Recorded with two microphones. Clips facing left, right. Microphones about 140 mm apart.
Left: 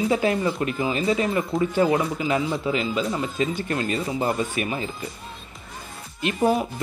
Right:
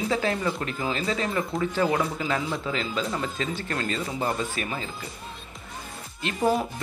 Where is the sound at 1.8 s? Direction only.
5° left (ahead or behind).